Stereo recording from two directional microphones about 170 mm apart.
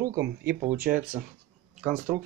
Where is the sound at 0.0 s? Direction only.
20° right (ahead or behind).